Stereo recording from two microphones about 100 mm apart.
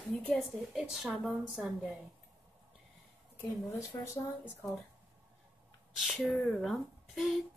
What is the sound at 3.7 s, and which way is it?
Speech, 30° left (ahead or behind).